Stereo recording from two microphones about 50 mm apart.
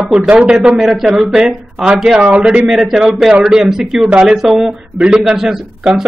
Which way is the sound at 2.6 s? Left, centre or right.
Centre.